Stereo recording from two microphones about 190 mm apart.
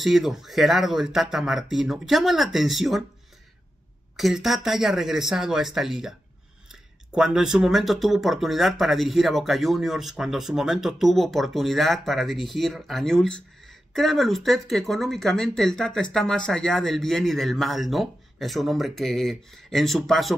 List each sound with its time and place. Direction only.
0.0 s speech: centre (ahead or behind)
4.2 s speech: centre (ahead or behind)